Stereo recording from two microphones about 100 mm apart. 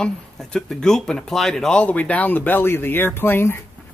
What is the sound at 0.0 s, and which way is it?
Speech, 5° left (ahead or behind).